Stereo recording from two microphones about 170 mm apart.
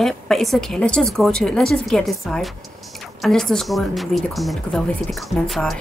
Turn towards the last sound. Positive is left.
turn(degrees=0)  # may be behind; listen again after turning